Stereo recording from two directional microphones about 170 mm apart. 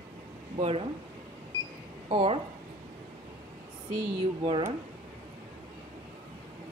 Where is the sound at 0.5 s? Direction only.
35° right (ahead or behind).